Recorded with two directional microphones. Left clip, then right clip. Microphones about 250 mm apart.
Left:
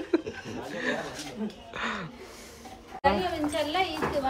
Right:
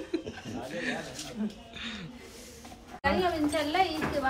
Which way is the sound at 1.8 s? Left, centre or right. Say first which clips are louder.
Left 8 dB; centre.